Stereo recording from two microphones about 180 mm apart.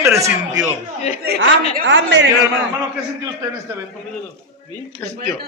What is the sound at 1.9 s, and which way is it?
Speech, 85° right.